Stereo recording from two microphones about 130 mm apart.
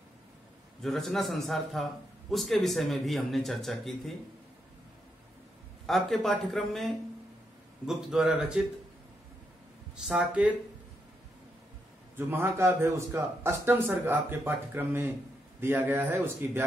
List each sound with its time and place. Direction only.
0.8 s speech: centre (ahead or behind)
5.9 s speech: centre (ahead or behind)
10.0 s a man's voice: 10° right (ahead or behind)
12.2 s a man's voice: 20° right (ahead or behind)